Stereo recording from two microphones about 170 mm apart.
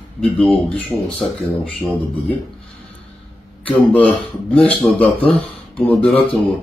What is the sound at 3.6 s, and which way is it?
Speech, 10° left (ahead or behind).